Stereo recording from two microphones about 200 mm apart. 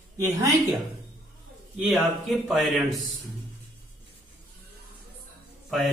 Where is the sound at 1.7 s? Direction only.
Centre (ahead or behind).